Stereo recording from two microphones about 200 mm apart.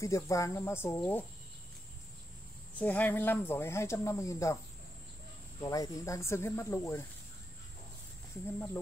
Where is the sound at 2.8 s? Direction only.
10° left (ahead or behind).